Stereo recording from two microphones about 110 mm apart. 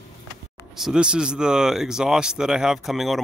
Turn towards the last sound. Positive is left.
turn(degrees=0)  # may be behind; listen again after turning